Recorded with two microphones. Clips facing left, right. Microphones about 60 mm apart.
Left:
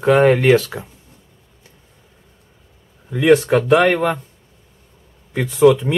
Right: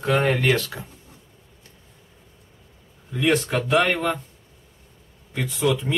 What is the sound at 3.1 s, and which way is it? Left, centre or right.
Speech, left.